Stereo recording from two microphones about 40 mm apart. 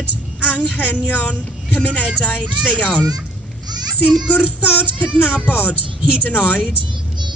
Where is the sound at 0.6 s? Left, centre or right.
Right.